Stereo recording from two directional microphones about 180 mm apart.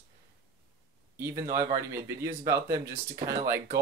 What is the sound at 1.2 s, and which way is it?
Speech, 15° right (ahead or behind).